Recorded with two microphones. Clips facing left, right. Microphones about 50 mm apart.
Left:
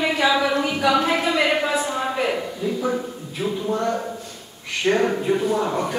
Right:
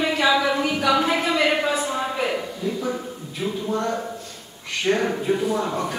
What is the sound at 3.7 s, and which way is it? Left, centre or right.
A woman's voice, centre.